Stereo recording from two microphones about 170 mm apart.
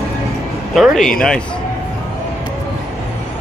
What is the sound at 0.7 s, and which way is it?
Speech, centre (ahead or behind).